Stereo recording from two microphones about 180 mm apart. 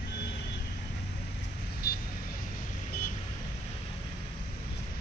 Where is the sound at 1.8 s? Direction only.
55° left (ahead or behind).